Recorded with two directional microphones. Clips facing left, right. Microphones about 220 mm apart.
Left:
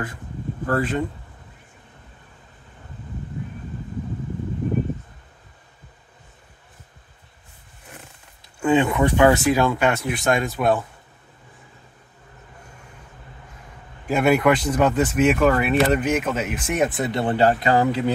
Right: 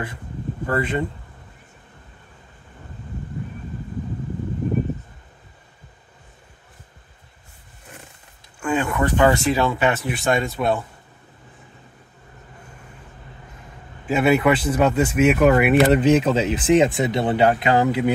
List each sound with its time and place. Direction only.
0.7 s speech: 10° right (ahead or behind)
8.5 s speech: 20° left (ahead or behind); by 10.8 s centre (ahead or behind)
14.1 s speech: 5° right (ahead or behind)
15.9 s speech: 30° right (ahead or behind)
16.9 s speech: 15° right (ahead or behind)